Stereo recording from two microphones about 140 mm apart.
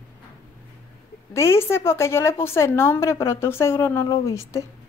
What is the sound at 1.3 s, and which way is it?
A woman's voice, 20° left (ahead or behind).